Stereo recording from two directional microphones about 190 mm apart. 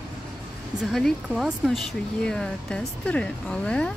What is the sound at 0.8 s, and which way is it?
Speech, centre (ahead or behind).